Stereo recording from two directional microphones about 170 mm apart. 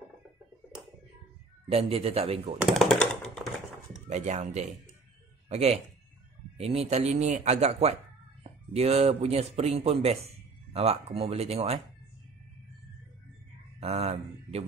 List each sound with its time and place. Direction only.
1.7 s speech: 35° right (ahead or behind)
2.6 s typing: centre (ahead or behind)
4.1 s speech: 40° right (ahead or behind)
13.7 s a sound: 40° right (ahead or behind)